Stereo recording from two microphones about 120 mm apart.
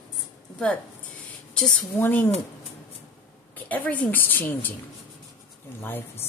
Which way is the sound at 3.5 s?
15° left (ahead or behind).